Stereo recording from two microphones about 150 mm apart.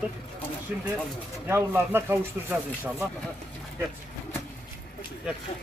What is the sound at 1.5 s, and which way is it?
A man's voice, 15° right (ahead or behind).